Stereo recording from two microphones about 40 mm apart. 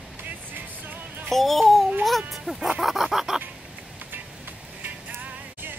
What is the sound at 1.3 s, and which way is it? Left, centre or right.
Babbling, centre.